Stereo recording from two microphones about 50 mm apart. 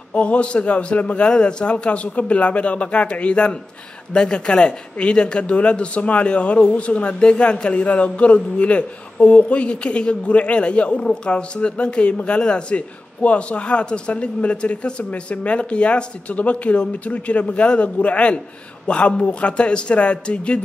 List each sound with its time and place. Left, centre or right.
0.1 s speech: left